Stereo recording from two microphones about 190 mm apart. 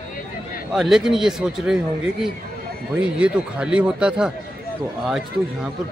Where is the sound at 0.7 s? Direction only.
Centre (ahead or behind).